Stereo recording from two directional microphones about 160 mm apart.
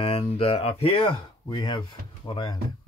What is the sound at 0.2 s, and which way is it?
Speech, 35° left (ahead or behind).